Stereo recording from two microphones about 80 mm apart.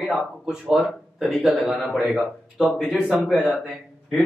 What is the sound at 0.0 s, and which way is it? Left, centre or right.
A man's voice, centre.